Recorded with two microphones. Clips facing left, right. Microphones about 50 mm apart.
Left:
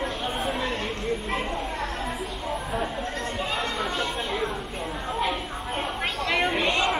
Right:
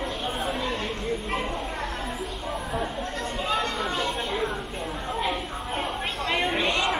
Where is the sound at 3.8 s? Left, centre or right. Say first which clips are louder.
Even; centre.